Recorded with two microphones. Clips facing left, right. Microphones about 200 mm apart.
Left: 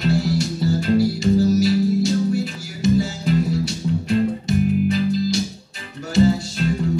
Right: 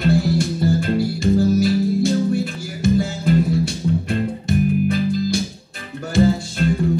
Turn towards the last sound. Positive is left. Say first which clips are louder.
# even
turn(degrees=-55)  # may be behind; listen again after turning